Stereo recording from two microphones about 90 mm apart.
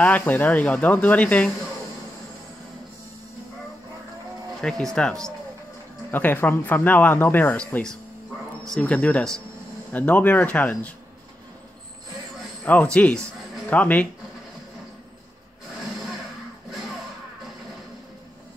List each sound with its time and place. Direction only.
0.3 s speech: 20° left (ahead or behind)
4.6 s speech: 5° left (ahead or behind)
6.1 s speech: 20° left (ahead or behind)
7.5 s speech: 10° left (ahead or behind)
12.6 s speech: 15° left (ahead or behind)